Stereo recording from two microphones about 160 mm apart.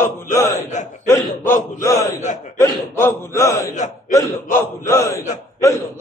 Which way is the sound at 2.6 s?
15° left (ahead or behind).